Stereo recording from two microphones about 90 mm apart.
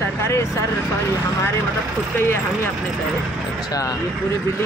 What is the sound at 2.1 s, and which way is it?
Speech, 30° left (ahead or behind).